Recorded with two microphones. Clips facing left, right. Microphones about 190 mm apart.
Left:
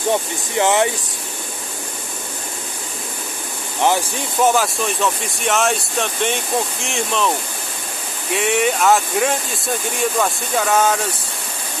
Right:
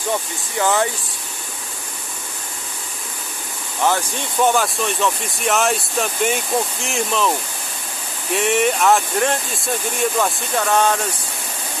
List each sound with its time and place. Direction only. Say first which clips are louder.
0.1 s speech: left 3 dB; 20° left (ahead or behind)
3.8 s speech: left 2 dB; 20° left (ahead or behind)
4.4 s speech: left 1 dB; centre (ahead or behind)